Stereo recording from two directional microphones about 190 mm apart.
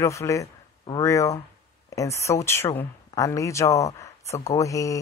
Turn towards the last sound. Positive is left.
turn(degrees=15)  # may be behind; listen again after turning